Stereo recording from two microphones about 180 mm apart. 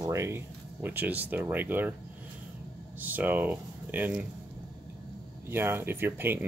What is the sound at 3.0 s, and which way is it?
Speech, 10° right (ahead or behind).